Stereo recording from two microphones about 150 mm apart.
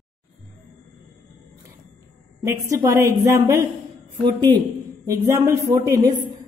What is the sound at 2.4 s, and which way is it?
A woman's voice, 20° right (ahead or behind).